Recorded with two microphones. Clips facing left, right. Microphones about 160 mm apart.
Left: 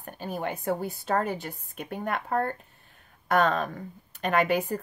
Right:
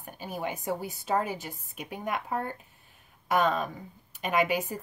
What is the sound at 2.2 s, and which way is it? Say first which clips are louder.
Speech: left 5 dB; 55° left (ahead or behind).